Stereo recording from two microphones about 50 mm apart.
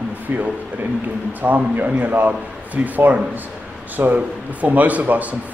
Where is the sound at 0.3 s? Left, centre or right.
Right.